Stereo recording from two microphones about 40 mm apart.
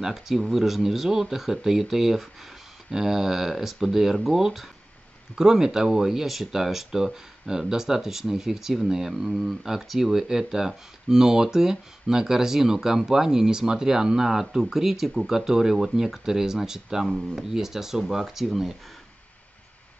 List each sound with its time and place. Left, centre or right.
0.0 s speech: centre
9.5 s speech: centre